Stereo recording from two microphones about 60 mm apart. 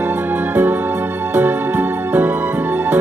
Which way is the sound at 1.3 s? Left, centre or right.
Right.